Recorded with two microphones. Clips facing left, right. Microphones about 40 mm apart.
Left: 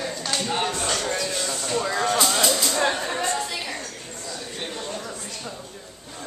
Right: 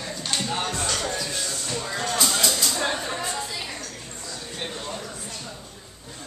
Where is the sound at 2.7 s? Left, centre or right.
Left.